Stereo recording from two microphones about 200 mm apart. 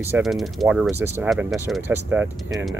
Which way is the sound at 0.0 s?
5° right (ahead or behind).